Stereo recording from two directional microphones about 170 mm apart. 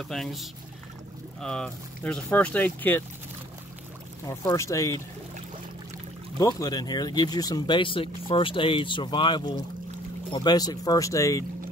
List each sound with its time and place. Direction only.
0.0 s speech: centre (ahead or behind)
4.3 s speech: 15° left (ahead or behind)
6.3 s speech: 20° left (ahead or behind)